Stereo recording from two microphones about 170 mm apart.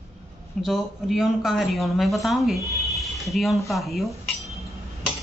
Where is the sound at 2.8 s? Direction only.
Centre (ahead or behind).